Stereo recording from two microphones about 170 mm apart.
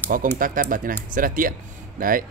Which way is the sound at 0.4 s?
55° right (ahead or behind).